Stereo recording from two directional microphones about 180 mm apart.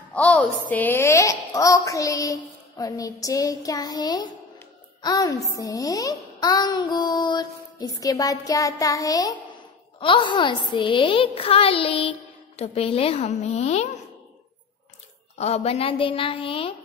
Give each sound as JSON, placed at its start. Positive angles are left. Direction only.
{"t": 0.1, "sound": "a child's voice", "side_deg": 5}
{"t": 1.9, "sound": "music", "side_deg": 20}
{"t": 15.3, "sound": "music", "side_deg": 35}